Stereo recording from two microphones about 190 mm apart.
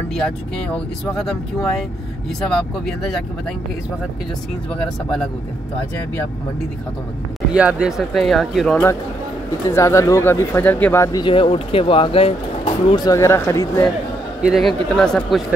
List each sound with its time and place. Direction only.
1.1 s speech: 5° left (ahead or behind)
7.5 s speech: 5° right (ahead or behind)
9.7 s speech: 15° left (ahead or behind)
14.4 s speech: centre (ahead or behind)